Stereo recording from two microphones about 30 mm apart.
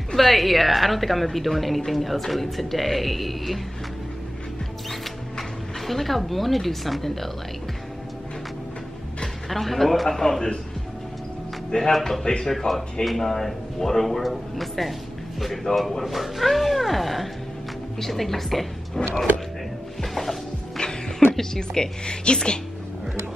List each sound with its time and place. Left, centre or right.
0.2 s a man's voice: centre
5.9 s a man's voice: centre
9.5 s a man's voice: centre
11.7 s speech: left
12.3 s speech: centre
12.5 s a man's voice: centre
19.0 s speech: centre
20.0 s music: centre
21.5 s a woman's voice: left